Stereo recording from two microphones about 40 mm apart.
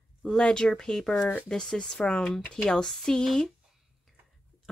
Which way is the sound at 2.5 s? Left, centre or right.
Centre.